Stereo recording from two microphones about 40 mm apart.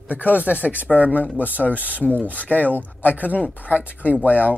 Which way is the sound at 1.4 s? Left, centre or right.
Left.